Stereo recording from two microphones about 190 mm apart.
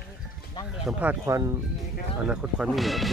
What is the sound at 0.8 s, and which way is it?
Speech, 10° right (ahead or behind).